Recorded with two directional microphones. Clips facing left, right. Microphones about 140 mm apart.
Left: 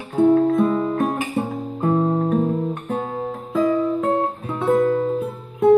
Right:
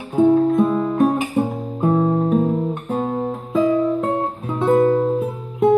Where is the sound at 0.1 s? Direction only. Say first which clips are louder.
Right 1 dB; 20° right (ahead or behind).